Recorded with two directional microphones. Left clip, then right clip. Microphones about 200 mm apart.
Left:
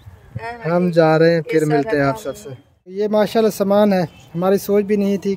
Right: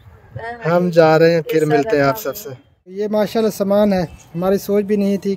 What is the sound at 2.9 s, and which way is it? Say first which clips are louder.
Speech: left 2 dB; 10° left (ahead or behind).